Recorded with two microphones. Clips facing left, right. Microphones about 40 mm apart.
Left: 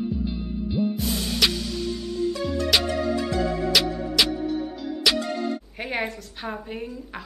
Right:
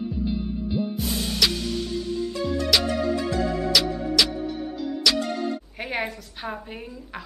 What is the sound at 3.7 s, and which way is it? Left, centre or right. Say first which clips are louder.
Music: left 1 dB; centre.